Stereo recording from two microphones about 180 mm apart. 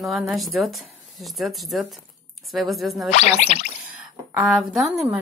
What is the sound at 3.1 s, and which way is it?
Speech, 40° left (ahead or behind).